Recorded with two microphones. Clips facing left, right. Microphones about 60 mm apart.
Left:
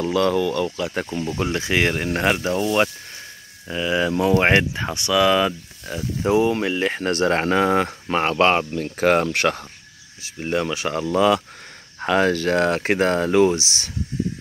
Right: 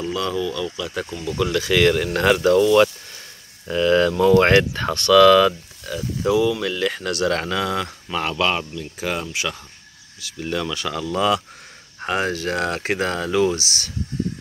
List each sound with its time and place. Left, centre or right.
0.0 s speech: left
1.3 s speech: left
3.6 s speech: centre
5.9 s speech: left
8.6 s speech: left
10.2 s speech: left